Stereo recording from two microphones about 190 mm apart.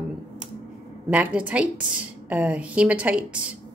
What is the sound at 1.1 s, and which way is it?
A woman's voice, 5° right (ahead or behind).